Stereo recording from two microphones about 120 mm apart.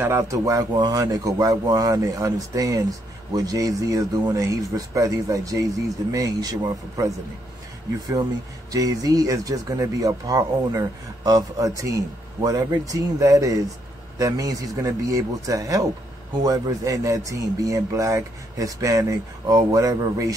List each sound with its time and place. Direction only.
0.0 s speech: 25° right (ahead or behind)
8.7 s speech: 30° right (ahead or behind)